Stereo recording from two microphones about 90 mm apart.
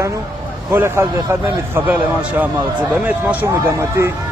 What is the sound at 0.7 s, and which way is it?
Speech, 25° right (ahead or behind).